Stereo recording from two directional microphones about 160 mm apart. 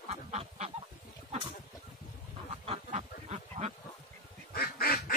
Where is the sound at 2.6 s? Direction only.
45° right (ahead or behind).